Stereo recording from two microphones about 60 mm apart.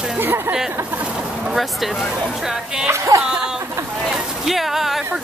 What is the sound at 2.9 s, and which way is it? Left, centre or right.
Speech, right.